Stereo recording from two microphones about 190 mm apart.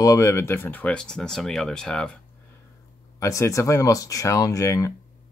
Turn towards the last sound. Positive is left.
turn(degrees=15)  # may be behind; listen again after turning